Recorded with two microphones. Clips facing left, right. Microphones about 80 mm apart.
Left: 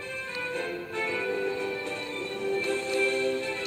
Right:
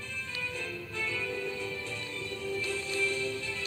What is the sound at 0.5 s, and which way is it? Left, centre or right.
Music, left.